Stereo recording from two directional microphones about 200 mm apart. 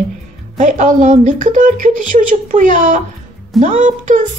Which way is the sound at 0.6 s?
40° right (ahead or behind).